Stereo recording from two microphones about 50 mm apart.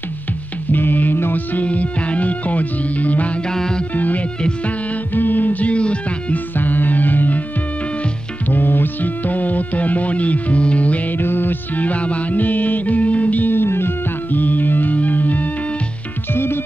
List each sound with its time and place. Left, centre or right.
0.7 s music: left
3.4 s music: centre
3.9 s speech: left
4.4 s music: centre
4.9 s music: left
6.5 s music: left
8.5 s music: left
11.1 s music: left
13.5 s music: left
16.3 s music: left